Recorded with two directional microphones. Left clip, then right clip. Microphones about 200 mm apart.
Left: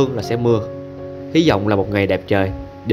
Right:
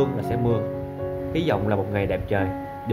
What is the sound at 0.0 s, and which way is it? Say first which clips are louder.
Speech: left 6 dB; 45° left (ahead or behind).